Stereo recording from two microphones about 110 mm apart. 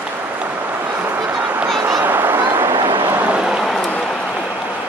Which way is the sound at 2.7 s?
45° right (ahead or behind).